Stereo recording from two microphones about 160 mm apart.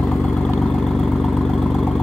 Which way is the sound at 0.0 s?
5° left (ahead or behind).